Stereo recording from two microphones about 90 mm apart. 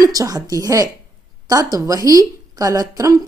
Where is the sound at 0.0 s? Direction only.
40° right (ahead or behind).